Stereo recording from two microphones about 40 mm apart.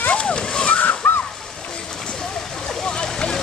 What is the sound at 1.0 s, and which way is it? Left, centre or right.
Water, left.